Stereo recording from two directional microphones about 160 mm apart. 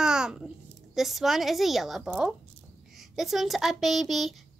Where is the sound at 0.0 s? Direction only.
5° right (ahead or behind).